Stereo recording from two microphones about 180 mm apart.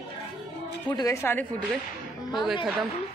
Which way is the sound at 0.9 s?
15° left (ahead or behind).